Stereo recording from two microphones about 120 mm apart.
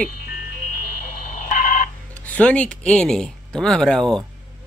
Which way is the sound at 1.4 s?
90° left.